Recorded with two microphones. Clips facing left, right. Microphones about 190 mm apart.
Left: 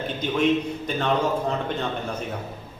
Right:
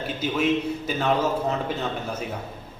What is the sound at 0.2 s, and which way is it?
Speech, 5° right (ahead or behind).